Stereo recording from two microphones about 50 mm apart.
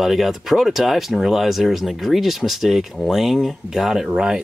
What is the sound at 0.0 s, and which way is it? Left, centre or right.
Speech, centre.